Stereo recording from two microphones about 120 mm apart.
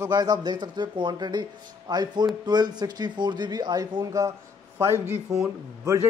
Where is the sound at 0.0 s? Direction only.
35° right (ahead or behind).